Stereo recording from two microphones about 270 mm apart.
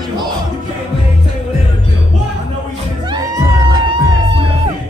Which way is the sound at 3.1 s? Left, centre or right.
Centre.